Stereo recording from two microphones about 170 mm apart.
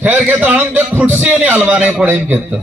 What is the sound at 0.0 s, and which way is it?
A man's voice, 10° right (ahead or behind).